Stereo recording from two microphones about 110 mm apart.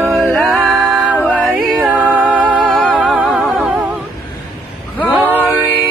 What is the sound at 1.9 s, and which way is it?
Music, 15° right (ahead or behind).